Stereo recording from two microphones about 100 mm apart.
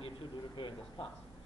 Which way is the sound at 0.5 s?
55° left (ahead or behind).